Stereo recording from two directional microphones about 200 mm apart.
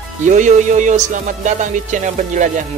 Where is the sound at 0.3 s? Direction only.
35° right (ahead or behind).